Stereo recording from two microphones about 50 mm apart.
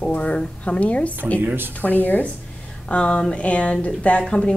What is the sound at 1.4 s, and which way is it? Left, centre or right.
Speech, right.